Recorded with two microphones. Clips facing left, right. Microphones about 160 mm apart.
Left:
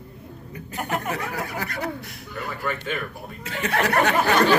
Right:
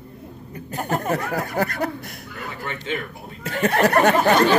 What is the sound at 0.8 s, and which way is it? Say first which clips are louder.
Speech: right 4 dB; 40° right (ahead or behind).